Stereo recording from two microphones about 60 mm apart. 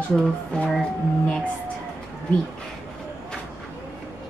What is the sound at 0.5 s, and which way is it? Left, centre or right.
Speech, centre.